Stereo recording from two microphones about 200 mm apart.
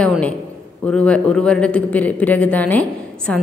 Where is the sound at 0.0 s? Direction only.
5° left (ahead or behind).